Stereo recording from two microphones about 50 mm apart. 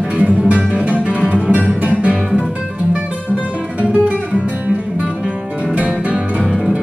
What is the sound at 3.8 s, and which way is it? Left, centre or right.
Guitar, right.